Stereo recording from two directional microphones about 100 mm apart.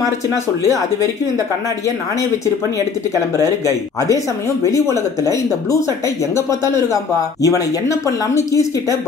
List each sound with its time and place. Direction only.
4.6 s speech: 30° left (ahead or behind)